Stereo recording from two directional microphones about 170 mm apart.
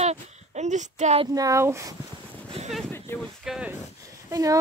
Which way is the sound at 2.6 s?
35° right (ahead or behind).